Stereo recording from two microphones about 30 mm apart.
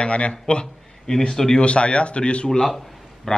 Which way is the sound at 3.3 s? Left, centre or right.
Centre.